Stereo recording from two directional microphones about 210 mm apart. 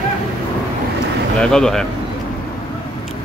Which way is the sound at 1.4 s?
5° left (ahead or behind).